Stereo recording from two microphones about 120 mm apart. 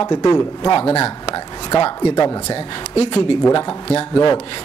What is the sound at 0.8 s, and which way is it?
Speech, 55° left (ahead or behind).